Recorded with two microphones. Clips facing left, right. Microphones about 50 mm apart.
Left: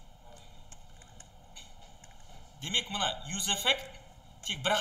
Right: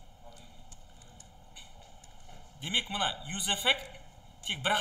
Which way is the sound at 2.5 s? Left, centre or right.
Centre.